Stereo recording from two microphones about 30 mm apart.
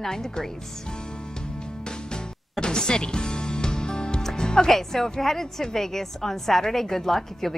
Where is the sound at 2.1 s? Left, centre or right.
Left.